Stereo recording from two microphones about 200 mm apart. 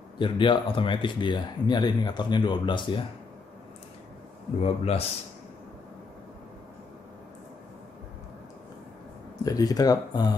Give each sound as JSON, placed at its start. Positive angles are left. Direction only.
{"t": 0.2, "sound": "speech", "side_deg": 25}
{"t": 4.6, "sound": "speech", "side_deg": 30}
{"t": 9.4, "sound": "speech", "side_deg": 20}